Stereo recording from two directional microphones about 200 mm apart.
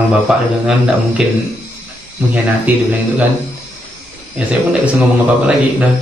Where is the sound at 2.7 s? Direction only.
5° right (ahead or behind).